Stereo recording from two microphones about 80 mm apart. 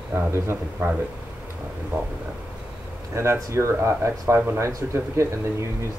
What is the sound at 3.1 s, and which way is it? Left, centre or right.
Speech, right.